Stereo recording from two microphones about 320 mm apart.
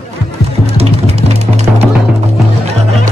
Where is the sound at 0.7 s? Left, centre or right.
Centre.